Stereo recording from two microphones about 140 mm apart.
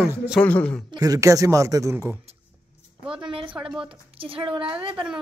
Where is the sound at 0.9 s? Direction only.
25° right (ahead or behind).